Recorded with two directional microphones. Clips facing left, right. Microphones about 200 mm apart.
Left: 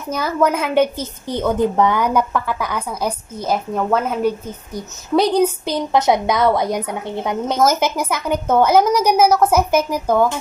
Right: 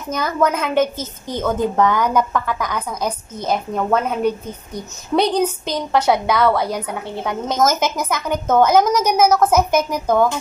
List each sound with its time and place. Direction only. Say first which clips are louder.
0.1 s a woman's voice: left 1 dB; 5° left (ahead or behind)